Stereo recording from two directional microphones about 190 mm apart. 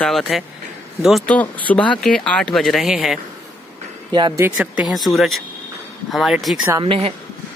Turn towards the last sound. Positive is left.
turn(degrees=-30)  # may be behind; listen again after turning